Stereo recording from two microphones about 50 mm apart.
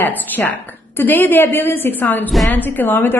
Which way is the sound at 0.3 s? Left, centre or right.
Left.